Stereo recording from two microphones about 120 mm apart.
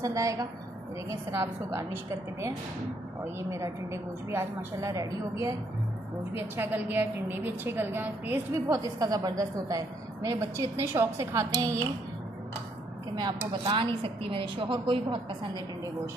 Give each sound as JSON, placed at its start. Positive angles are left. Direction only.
{"t": 0.0, "sound": "a woman's voice", "side_deg": -25}
{"t": 6.3, "sound": "a woman's voice", "side_deg": -20}
{"t": 8.7, "sound": "a woman's voice", "side_deg": -30}
{"t": 13.2, "sound": "a woman's voice", "side_deg": -40}